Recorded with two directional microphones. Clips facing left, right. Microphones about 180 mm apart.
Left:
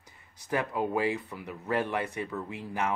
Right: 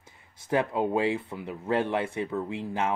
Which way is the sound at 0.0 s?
25° right (ahead or behind).